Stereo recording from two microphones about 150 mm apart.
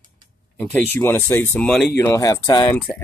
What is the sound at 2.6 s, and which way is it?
Speech, 15° left (ahead or behind).